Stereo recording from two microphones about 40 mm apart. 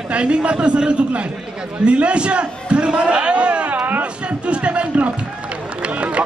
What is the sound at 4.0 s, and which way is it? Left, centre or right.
Run, right.